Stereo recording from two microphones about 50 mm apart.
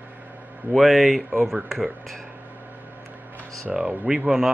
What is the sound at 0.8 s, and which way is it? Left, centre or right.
Speech, centre.